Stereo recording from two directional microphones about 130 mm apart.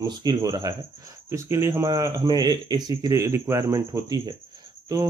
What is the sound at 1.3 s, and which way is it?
Speech, 20° right (ahead or behind).